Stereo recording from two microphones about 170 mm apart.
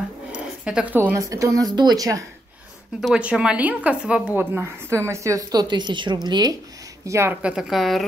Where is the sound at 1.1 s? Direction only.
20° right (ahead or behind).